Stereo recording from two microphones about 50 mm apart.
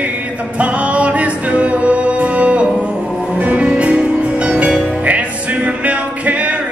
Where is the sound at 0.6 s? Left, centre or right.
Right.